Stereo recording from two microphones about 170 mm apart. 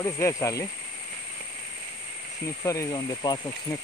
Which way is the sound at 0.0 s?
15° left (ahead or behind).